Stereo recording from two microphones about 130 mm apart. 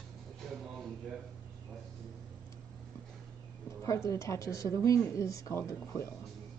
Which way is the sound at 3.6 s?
25° left (ahead or behind).